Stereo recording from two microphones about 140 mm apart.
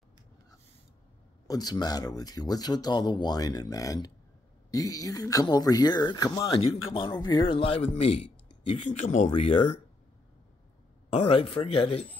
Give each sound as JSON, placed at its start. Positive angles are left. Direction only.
{"t": 1.5, "sound": "speech", "side_deg": 30}
{"t": 9.3, "sound": "speech", "side_deg": 40}
{"t": 11.2, "sound": "speech", "side_deg": 35}